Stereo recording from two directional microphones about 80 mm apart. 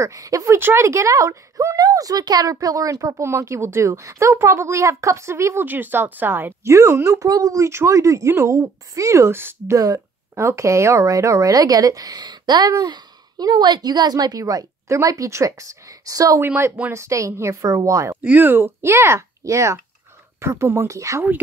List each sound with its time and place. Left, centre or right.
0.0 s speech: right
0.6 s speech: right
6.7 s speech: right
9.8 s speech: right
16.3 s speech: right
18.2 s speech: right